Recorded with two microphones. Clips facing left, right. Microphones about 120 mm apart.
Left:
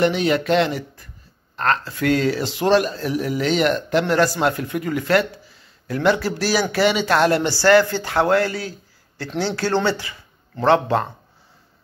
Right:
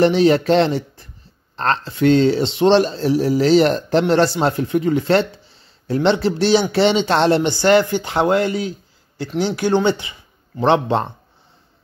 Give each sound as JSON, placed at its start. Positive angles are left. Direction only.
{"t": 0.0, "sound": "speech", "side_deg": -35}